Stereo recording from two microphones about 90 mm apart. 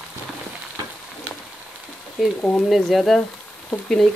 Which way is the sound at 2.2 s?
5° left (ahead or behind).